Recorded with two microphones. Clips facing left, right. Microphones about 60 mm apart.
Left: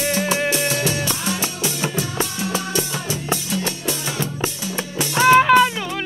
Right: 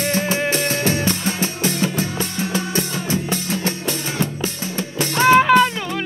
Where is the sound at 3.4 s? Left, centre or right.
Right.